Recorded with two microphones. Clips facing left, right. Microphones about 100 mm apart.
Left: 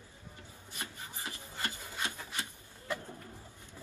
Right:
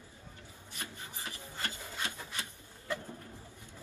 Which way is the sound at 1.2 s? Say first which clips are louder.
Left 1 dB; 20° left (ahead or behind).